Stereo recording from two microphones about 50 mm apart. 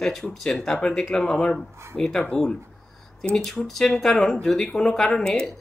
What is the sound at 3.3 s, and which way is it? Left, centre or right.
Speech, centre.